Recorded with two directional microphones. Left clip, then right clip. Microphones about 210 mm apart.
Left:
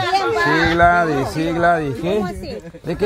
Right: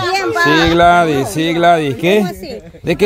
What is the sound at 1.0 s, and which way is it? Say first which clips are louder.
Speech: right 4 dB; 55° right (ahead or behind).